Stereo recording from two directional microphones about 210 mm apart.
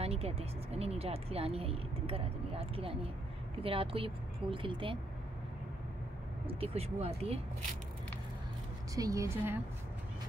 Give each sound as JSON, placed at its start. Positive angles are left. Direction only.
{"t": 0.0, "sound": "speech", "side_deg": -30}
{"t": 6.4, "sound": "speech", "side_deg": -30}
{"t": 8.9, "sound": "a woman's voice", "side_deg": -15}